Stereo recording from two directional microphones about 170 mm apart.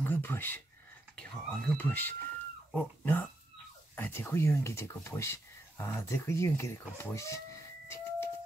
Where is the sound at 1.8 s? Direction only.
10° left (ahead or behind).